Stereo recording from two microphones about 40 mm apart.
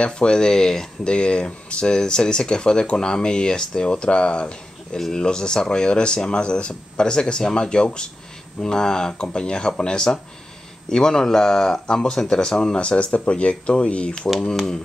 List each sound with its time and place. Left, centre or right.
0.0 s speech: left
4.9 s speech: centre
12.8 s speech: left
14.4 s speech: centre